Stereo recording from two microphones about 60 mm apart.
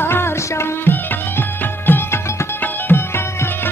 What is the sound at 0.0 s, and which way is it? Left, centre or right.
Music, left.